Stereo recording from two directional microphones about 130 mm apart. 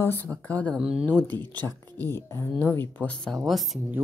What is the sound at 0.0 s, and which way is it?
Speech, 15° left (ahead or behind).